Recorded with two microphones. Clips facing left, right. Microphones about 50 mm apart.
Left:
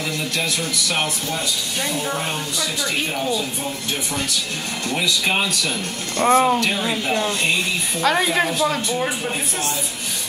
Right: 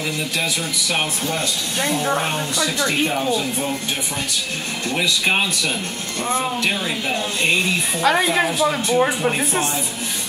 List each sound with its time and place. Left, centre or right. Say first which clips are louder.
0.4 s speech: even; centre
1.8 s speech: right 5 dB; right
6.1 s speech: left 8 dB; left
6.7 s speech: left 1 dB; centre
8.9 s speech: right 5 dB; right